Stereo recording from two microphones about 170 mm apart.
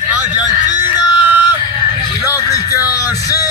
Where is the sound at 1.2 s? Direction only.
10° right (ahead or behind).